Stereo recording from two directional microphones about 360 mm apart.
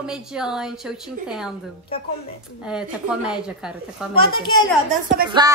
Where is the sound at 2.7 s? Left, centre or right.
Centre.